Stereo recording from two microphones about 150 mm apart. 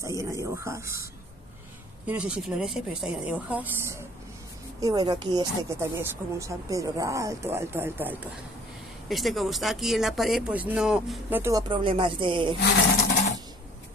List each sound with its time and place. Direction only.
0.0 s speech: 20° right (ahead or behind)
2.0 s speech: 5° right (ahead or behind)
4.7 s speech: 25° right (ahead or behind)
9.1 s speech: centre (ahead or behind)
11.5 s speech: 35° right (ahead or behind)